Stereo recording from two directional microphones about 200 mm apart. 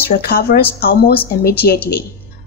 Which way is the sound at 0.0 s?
50° left (ahead or behind).